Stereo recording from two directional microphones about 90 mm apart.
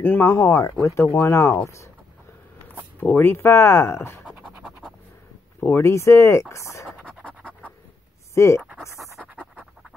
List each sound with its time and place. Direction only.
0.0 s speech: 20° left (ahead or behind)
3.0 s speech: 20° left (ahead or behind)
4.3 s scratch: 10° right (ahead or behind)
5.6 s speech: 30° left (ahead or behind)
7.2 s scratch: 15° left (ahead or behind)
8.4 s speech: 30° left (ahead or behind)
8.9 s pant: centre (ahead or behind)
9.2 s pant: 15° right (ahead or behind)